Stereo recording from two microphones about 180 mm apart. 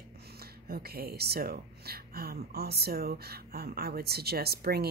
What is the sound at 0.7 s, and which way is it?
Speech, 60° right (ahead or behind).